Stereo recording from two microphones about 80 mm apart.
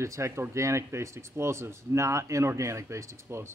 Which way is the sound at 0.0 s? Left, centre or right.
Right.